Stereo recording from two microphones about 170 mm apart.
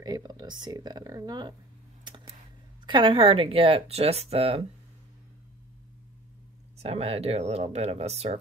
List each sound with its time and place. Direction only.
0.0 s speech: 25° right (ahead or behind)
2.0 s a sound: 25° right (ahead or behind)
2.9 s speech: 30° right (ahead or behind)
6.8 s speech: 35° right (ahead or behind)